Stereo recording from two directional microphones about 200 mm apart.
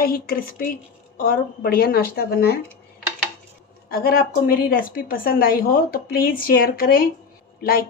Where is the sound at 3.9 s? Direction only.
50° left (ahead or behind).